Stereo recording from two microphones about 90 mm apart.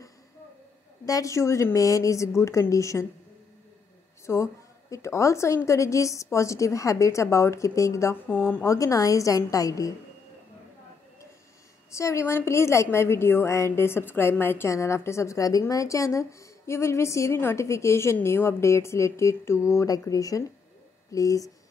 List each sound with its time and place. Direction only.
1.0 s a woman's voice: 40° left (ahead or behind)
4.3 s a woman's voice: 35° left (ahead or behind)
8.6 s a woman's voice: 35° left (ahead or behind)
11.9 s a woman's voice: 35° left (ahead or behind)